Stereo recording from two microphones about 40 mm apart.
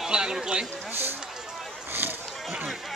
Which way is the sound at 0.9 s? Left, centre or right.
Right.